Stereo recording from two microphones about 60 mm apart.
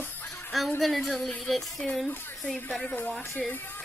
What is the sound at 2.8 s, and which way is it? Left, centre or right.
Speech, left.